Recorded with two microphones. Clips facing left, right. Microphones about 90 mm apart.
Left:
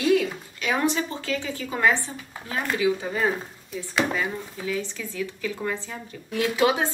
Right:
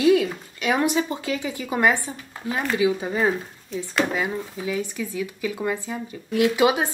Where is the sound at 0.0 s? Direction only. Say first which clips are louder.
Right 3 dB; 20° right (ahead or behind).